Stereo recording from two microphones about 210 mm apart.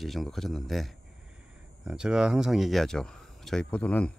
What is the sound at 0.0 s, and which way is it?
Speech, centre (ahead or behind).